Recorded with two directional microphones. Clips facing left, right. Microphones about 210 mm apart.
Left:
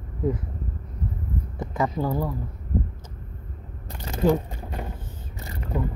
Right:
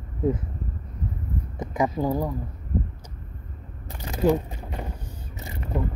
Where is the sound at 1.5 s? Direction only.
20° right (ahead or behind).